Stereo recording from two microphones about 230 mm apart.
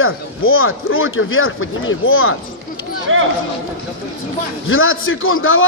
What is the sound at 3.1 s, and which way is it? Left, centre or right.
Speech, right.